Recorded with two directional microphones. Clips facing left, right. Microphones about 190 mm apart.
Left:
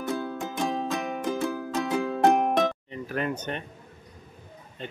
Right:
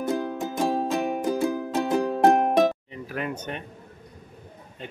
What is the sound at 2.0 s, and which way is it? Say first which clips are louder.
Music: right 3 dB; 35° right (ahead or behind).